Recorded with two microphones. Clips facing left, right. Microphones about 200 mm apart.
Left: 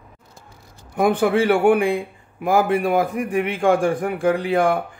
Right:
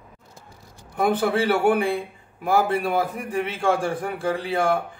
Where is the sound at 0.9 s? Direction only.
10° left (ahead or behind).